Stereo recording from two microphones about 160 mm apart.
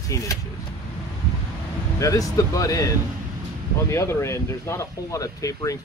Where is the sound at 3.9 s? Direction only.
15° left (ahead or behind).